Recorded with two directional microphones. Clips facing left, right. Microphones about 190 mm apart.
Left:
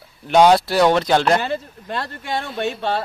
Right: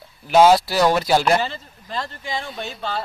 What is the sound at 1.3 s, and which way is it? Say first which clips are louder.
Speech: left 2 dB; 60° left (ahead or behind).